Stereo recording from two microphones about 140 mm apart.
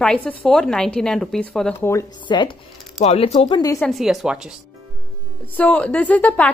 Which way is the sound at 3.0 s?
45° left (ahead or behind).